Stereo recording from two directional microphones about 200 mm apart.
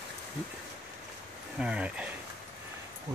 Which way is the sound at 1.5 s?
5° right (ahead or behind).